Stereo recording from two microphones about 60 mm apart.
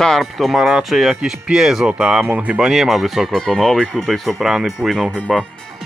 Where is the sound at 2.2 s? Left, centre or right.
Right.